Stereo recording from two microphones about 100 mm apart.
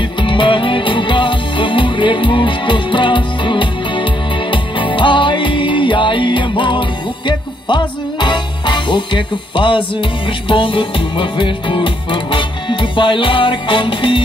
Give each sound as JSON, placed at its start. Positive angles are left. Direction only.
{"t": 0.2, "sound": "music", "side_deg": 55}